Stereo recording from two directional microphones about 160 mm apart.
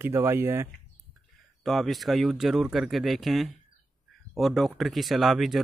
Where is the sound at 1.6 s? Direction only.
Centre (ahead or behind).